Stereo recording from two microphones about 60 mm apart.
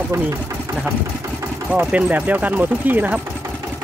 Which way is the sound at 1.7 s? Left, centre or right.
Right.